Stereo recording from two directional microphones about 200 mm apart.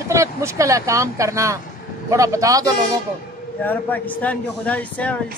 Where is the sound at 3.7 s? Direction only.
10° left (ahead or behind).